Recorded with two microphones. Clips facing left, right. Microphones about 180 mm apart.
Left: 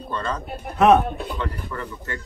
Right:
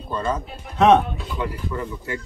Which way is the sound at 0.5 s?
60° left (ahead or behind).